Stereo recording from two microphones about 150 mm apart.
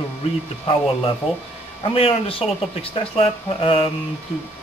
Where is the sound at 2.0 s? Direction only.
40° left (ahead or behind).